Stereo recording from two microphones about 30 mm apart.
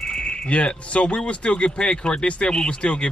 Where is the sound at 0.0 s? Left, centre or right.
Left.